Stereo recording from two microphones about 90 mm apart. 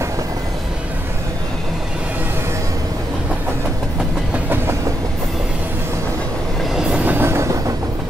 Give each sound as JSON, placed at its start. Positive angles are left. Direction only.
{"t": 6.8, "sound": "train", "side_deg": -15}